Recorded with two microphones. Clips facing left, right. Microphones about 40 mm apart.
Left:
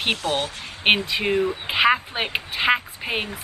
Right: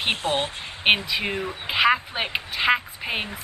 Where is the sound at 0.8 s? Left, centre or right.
Centre.